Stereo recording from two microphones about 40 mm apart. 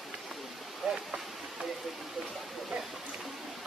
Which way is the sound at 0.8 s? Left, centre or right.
Centre.